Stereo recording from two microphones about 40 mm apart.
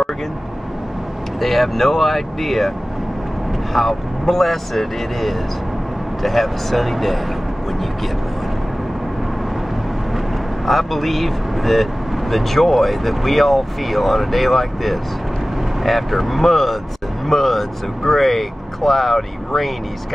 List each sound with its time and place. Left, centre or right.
1.4 s speech: centre
3.7 s speech: centre
10.1 s speech: centre